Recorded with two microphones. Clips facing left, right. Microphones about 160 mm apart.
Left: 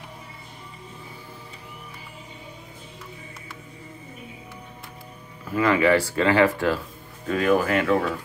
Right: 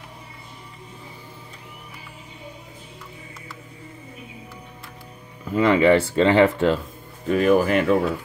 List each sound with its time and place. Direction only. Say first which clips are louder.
5.5 s speech: right 3 dB; 20° right (ahead or behind)